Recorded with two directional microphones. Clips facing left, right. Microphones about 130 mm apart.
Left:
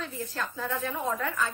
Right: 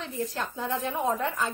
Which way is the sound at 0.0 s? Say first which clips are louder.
Right 3 dB; 30° right (ahead or behind).